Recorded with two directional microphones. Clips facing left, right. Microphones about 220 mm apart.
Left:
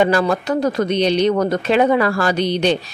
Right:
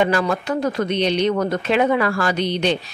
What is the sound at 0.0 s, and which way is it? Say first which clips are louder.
Speech: left 3 dB; 35° left (ahead or behind).